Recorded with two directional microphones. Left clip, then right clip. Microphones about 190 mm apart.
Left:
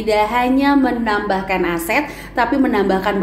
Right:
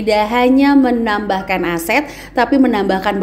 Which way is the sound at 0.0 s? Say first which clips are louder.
Right 2 dB; 40° right (ahead or behind).